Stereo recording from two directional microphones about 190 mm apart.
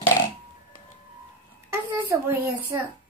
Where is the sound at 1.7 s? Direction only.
15° right (ahead or behind).